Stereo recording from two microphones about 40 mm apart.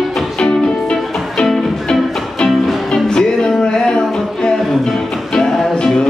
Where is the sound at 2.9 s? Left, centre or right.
Centre.